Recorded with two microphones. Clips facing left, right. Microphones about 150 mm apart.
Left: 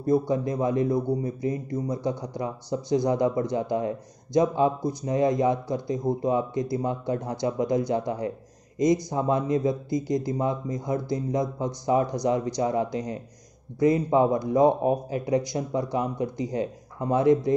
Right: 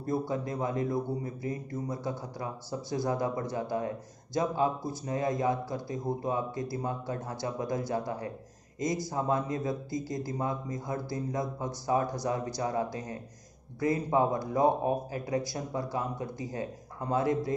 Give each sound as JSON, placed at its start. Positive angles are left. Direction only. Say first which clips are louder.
{"t": 0.3, "sound": "a man's voice", "louder": "left 7 dB", "side_deg": 20}